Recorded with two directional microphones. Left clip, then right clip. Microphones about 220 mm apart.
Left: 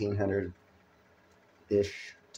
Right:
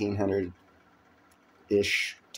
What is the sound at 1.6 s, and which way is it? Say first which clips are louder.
Speech: right 4 dB; 5° right (ahead or behind).